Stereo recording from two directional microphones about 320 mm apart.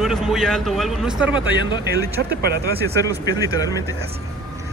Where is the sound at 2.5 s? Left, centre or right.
Right.